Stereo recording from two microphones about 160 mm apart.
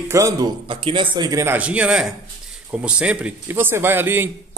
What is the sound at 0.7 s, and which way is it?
A man's voice, 30° right (ahead or behind).